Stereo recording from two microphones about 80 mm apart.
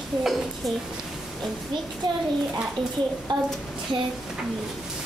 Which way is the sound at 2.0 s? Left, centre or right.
Right.